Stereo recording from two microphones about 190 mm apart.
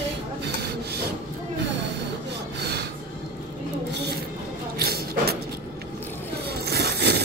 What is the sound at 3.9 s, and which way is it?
Filing, 60° right (ahead or behind).